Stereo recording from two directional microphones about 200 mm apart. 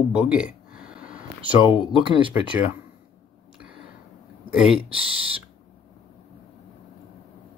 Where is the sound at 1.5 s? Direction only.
25° right (ahead or behind).